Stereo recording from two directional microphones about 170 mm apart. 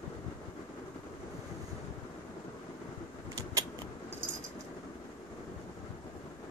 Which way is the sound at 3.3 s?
20° right (ahead or behind).